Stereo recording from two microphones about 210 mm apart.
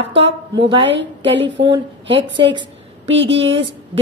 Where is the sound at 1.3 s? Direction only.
60° right (ahead or behind).